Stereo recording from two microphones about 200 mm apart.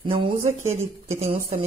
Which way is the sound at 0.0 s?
25° right (ahead or behind).